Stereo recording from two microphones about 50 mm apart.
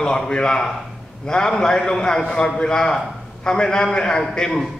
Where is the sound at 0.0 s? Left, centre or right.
Centre.